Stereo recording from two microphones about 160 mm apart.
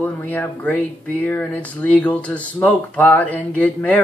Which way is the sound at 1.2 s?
10° left (ahead or behind).